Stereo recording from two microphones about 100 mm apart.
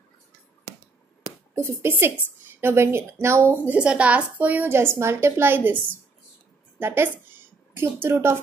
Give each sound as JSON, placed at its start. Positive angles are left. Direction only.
{"t": 1.5, "sound": "a woman's voice", "side_deg": -25}
{"t": 3.7, "sound": "a woman's voice", "side_deg": -10}
{"t": 6.8, "sound": "a woman's voice", "side_deg": -20}